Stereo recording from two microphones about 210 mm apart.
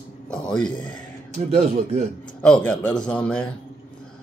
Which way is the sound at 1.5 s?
30° right (ahead or behind).